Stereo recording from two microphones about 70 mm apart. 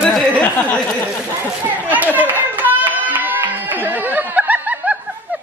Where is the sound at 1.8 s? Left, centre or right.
Right.